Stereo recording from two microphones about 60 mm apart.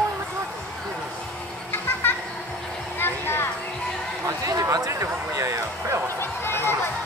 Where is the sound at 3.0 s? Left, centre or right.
Left.